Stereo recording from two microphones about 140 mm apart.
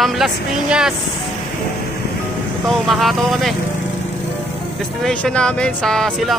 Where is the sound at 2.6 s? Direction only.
Centre (ahead or behind).